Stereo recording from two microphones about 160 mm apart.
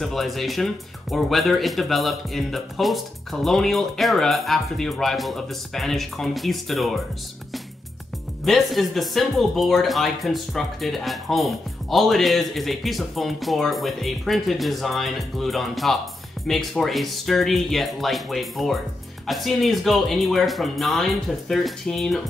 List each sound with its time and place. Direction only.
0.0 s speech: centre (ahead or behind)
8.5 s speech: centre (ahead or behind)